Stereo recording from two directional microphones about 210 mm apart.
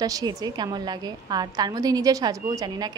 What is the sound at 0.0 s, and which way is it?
A woman's voice, 15° right (ahead or behind).